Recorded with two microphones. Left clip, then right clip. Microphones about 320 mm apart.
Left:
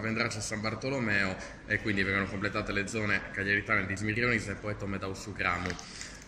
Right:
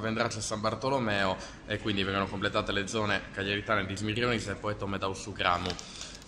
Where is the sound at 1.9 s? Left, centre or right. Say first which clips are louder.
Right 2 dB; centre.